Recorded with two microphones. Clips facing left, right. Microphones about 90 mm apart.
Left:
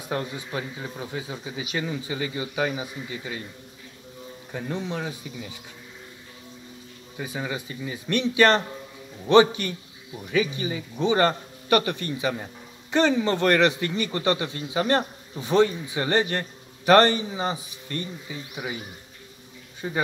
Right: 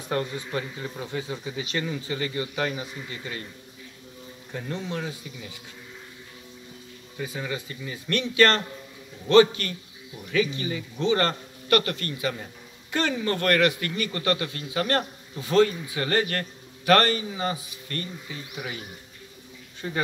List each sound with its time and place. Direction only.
0.1 s speech: 10° left (ahead or behind)
4.5 s speech: 15° left (ahead or behind)
7.2 s a man's voice: 20° left (ahead or behind)